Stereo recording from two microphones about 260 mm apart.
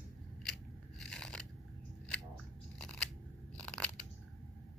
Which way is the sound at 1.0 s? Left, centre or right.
Centre.